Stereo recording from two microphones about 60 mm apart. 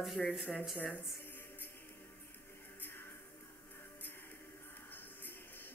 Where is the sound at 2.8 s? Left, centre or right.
Left.